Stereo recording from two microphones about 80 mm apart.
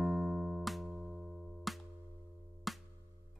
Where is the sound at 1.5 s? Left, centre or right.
Centre.